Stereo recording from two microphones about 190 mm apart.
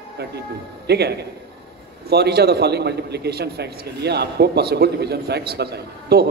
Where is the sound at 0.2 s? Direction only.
60° right (ahead or behind).